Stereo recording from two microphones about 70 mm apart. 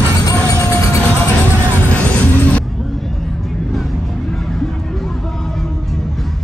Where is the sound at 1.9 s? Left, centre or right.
Left.